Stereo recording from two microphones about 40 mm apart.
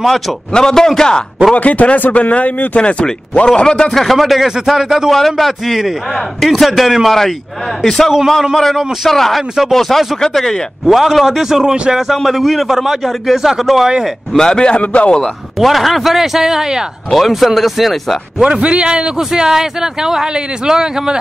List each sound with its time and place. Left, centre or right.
0.5 s a man's voice: centre
1.5 s a man's voice: left
3.9 s speech: centre
5.1 s speech: centre
7.1 s a man's voice: centre
10.9 s speech: centre
12.1 s a man's voice: centre
14.3 s a man's voice: centre
15.6 s a man's voice: centre
17.1 s speech: centre
18.4 s a man's voice: right